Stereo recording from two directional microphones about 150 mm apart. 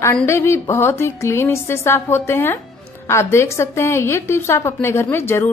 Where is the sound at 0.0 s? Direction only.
15° left (ahead or behind).